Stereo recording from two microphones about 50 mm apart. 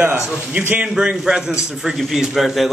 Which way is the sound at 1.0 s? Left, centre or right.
Centre.